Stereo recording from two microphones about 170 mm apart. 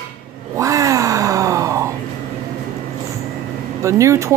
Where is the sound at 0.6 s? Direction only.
20° right (ahead or behind).